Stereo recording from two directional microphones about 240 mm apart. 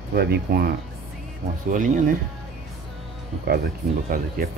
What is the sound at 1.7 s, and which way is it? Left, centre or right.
Speech, right.